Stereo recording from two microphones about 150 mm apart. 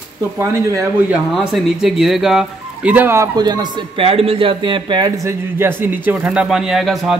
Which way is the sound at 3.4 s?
25° right (ahead or behind).